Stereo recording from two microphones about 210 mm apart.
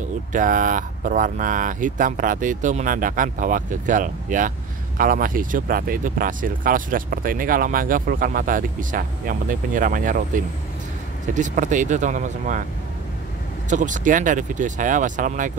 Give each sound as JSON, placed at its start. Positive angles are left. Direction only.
{"t": 0.3, "sound": "speech", "side_deg": -40}
{"t": 13.7, "sound": "speech", "side_deg": -35}